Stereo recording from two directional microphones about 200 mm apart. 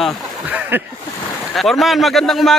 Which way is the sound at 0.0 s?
5° right (ahead or behind).